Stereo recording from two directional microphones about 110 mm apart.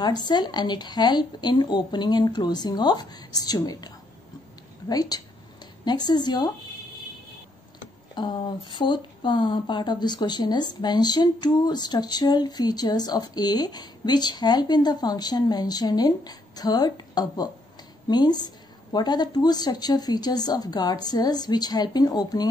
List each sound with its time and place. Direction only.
0.0 s speech: 40° left (ahead or behind)
8.1 s speech: 40° left (ahead or behind)